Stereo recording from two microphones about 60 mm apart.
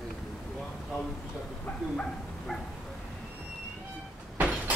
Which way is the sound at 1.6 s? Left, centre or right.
Centre.